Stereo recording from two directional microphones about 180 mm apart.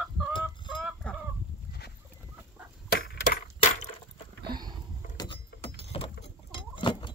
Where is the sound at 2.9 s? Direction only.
55° left (ahead or behind).